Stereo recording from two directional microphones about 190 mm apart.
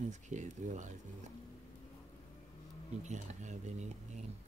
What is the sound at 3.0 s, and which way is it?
Speech, 40° right (ahead or behind).